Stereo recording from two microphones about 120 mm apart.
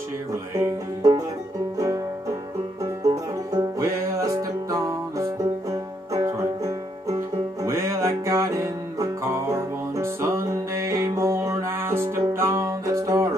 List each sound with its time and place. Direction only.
0.6 s banjo: 30° right (ahead or behind)
3.5 s music: 25° right (ahead or behind)